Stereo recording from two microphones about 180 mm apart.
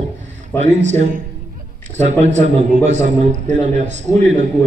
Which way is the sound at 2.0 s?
40° right (ahead or behind).